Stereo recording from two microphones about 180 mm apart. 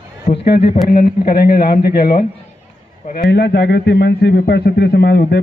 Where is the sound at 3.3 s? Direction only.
70° left (ahead or behind).